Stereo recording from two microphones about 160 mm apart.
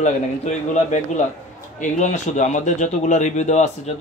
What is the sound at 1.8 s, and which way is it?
Speech, 50° left (ahead or behind).